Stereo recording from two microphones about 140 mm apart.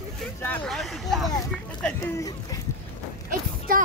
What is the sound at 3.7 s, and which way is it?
Speech, 85° right.